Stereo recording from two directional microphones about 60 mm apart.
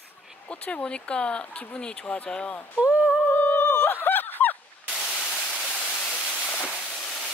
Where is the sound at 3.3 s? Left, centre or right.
Left; by 6.0 s centre.